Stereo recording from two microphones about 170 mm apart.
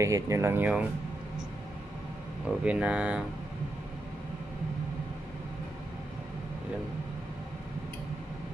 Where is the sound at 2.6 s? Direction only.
5° right (ahead or behind).